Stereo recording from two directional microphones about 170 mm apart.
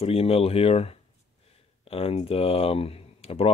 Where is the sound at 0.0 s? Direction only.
35° left (ahead or behind).